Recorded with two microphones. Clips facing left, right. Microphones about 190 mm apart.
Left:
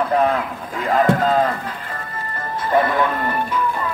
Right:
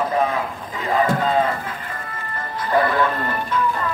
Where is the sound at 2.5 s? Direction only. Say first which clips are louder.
Left 1 dB; 20° left (ahead or behind).